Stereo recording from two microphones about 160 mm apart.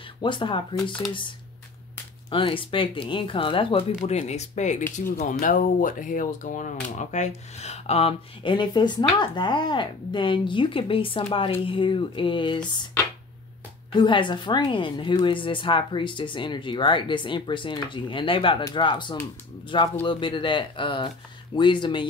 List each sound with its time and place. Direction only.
0.2 s speech: 30° left (ahead or behind)
2.2 s speech: 35° left (ahead or behind)
13.9 s speech: 30° left (ahead or behind)